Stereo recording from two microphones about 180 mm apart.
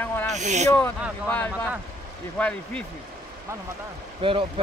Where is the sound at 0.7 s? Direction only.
15° left (ahead or behind).